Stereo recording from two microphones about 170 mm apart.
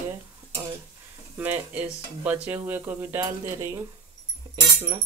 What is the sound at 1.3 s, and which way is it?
Speech, 10° right (ahead or behind).